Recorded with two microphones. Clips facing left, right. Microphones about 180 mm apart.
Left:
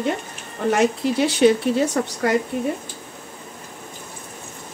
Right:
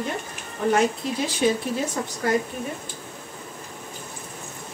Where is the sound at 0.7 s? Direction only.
70° left (ahead or behind).